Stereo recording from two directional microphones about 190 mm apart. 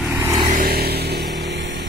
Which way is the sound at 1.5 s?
70° right (ahead or behind).